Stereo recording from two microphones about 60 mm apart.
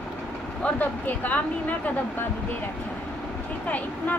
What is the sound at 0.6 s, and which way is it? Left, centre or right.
Speech, left.